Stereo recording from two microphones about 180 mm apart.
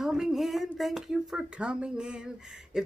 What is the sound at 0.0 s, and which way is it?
A woman's voice, centre (ahead or behind).